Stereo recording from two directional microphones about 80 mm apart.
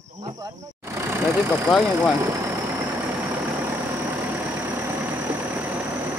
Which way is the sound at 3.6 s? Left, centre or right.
Right.